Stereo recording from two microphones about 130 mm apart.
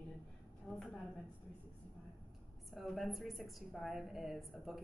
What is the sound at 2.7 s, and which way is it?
A woman's voice, centre (ahead or behind).